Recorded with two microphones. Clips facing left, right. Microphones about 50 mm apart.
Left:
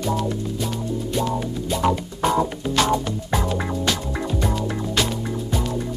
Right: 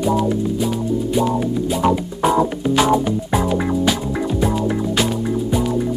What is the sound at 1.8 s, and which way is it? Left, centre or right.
Speech, centre.